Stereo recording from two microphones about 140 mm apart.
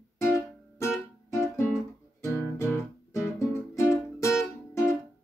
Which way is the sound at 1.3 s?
20° left (ahead or behind).